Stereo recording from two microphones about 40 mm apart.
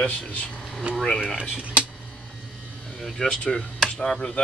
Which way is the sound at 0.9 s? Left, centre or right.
Centre.